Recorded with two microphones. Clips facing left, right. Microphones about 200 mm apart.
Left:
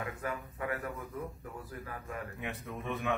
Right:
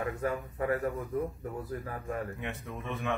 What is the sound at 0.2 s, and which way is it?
Speech, 35° right (ahead or behind).